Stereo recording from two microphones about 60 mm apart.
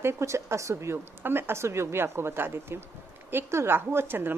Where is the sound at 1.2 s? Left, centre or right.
Right.